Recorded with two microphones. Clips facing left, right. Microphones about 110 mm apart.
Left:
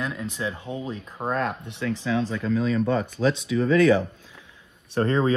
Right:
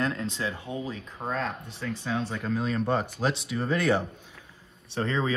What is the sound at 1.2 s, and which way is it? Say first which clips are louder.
Speech: left 5 dB; 60° left (ahead or behind).